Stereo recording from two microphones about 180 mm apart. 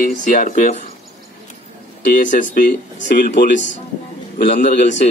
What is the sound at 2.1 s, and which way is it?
Speech, 45° left (ahead or behind).